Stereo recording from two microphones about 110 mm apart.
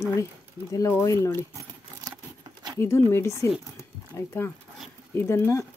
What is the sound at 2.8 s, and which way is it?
Speech, 25° left (ahead or behind).